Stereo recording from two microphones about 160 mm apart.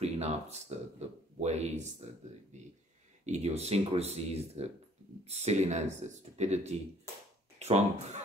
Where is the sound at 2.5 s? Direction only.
50° right (ahead or behind).